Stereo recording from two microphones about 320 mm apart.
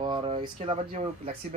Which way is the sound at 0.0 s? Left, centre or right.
Centre.